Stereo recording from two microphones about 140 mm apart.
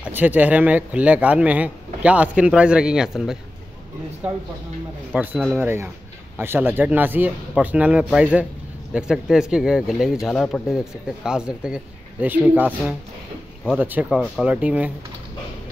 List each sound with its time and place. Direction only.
0.0 s speech: 10° right (ahead or behind)
5.1 s speech: 10° right (ahead or behind)
14.0 s speech: centre (ahead or behind)